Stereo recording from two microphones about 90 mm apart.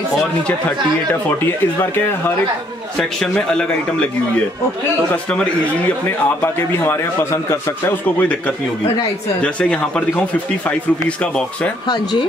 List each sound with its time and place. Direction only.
1.4 s a man's voice: 25° left (ahead or behind)
3.0 s a man's voice: 5° left (ahead or behind)
5.1 s a man's voice: 10° left (ahead or behind)
6.4 s a man's voice: 25° left (ahead or behind)